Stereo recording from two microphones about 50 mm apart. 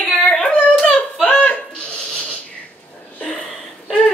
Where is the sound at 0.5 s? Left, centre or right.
Left.